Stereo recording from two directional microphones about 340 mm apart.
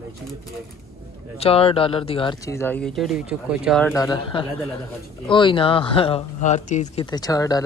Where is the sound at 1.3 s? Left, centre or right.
Centre.